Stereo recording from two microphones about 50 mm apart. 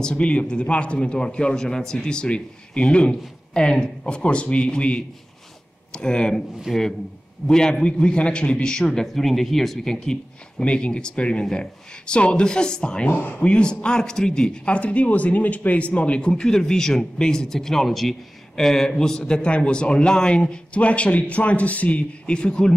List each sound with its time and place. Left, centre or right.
0.0 s a man's voice: centre
6.7 s a man's voice: centre
7.4 s speech: centre
9.0 s speech: centre
10.6 s a man's voice: left
13.0 s speech: left
13.4 s a man's voice: centre